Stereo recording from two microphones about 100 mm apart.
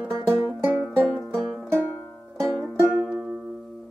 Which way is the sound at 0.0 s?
10° right (ahead or behind).